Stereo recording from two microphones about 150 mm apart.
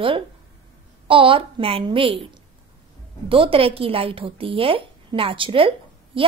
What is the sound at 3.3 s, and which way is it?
A woman's voice, 35° right (ahead or behind).